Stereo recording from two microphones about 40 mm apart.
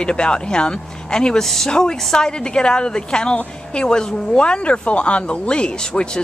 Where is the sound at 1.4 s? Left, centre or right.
Centre.